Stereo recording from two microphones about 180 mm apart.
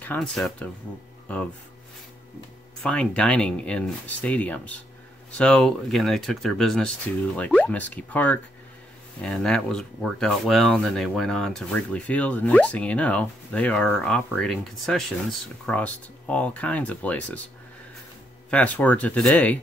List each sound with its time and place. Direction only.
0.0 s speech: 10° left (ahead or behind)
2.8 s speech: 5° left (ahead or behind)
18.5 s speech: 10° left (ahead or behind)